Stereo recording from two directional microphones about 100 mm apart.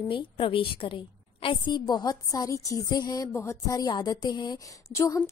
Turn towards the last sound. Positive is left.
turn(degrees=30)  # may be behind; listen again after turning